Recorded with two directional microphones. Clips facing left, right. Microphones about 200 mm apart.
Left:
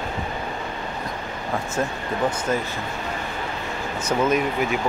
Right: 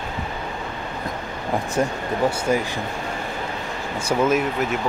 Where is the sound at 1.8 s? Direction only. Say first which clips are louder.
Right 3 dB; 10° right (ahead or behind).